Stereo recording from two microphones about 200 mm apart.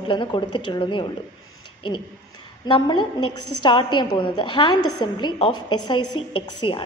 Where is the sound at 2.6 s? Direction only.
20° left (ahead or behind).